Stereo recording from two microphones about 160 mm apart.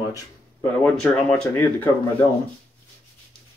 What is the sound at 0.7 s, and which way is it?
Speech, 10° left (ahead or behind).